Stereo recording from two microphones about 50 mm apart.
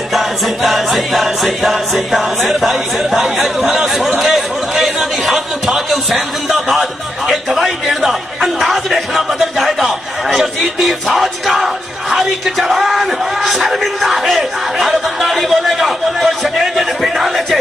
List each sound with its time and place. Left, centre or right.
0.1 s music: centre